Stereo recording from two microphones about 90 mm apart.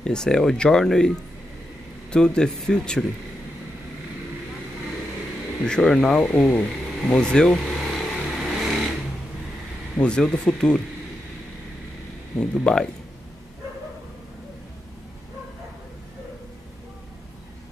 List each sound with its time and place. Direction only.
0.0 s speech: 10° left (ahead or behind)
5.7 s speech: 5° left (ahead or behind)
6.2 s vehicle: 15° left (ahead or behind); by 8.9 s 5° right (ahead or behind)
9.9 s speech: 10° left (ahead or behind)
12.4 s speech: 5° left (ahead or behind)